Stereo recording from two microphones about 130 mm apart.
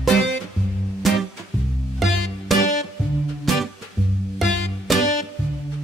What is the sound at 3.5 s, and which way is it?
Music, centre (ahead or behind).